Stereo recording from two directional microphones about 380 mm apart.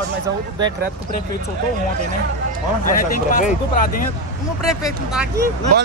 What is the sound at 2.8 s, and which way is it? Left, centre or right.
Speech, left.